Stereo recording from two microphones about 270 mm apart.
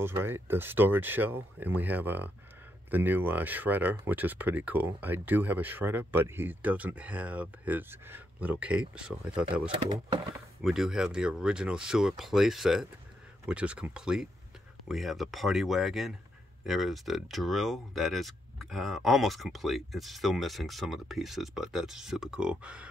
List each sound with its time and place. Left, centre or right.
0.0 s speech: centre
9.7 s speech: centre
10.6 s speech: centre